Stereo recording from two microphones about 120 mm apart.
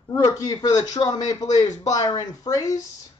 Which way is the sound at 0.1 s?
25° left (ahead or behind).